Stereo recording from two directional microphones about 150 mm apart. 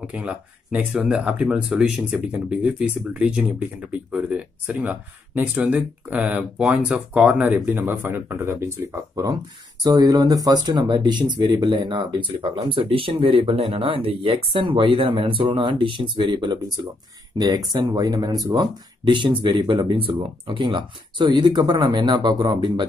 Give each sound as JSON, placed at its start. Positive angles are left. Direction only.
{"t": 0.0, "sound": "speech", "side_deg": -10}